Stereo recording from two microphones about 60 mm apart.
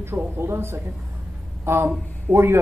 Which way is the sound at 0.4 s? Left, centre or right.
Right.